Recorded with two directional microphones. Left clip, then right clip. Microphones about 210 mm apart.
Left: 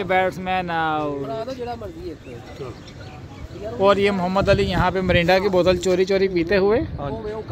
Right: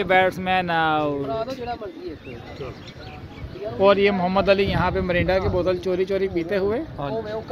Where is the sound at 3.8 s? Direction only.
Centre (ahead or behind); by 6.9 s 25° left (ahead or behind).